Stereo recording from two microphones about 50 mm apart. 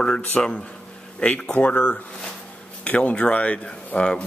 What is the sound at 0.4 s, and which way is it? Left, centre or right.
Speech, centre.